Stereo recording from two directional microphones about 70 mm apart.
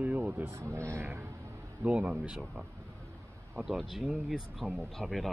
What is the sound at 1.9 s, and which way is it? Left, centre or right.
Speech, centre.